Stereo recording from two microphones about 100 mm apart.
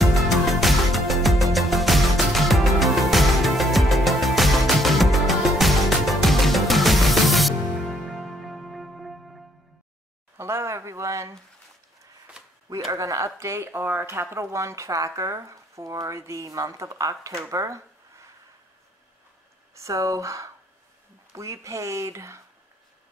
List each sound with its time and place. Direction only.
0.0 s music: centre (ahead or behind)
10.3 s a sound: 25° right (ahead or behind)
12.4 s shuffling cards: 10° right (ahead or behind)
12.9 s speech: 35° right (ahead or behind)
19.7 s speech: 30° right (ahead or behind)